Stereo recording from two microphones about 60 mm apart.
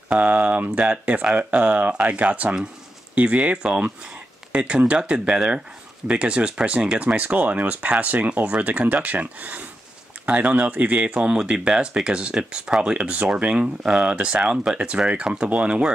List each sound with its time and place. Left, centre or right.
0.1 s speech: right